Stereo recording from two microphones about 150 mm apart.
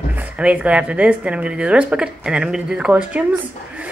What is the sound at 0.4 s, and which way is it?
Speech, 5° right (ahead or behind).